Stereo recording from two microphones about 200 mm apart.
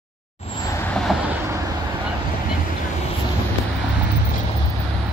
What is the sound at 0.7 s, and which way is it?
Vehicle, 5° left (ahead or behind).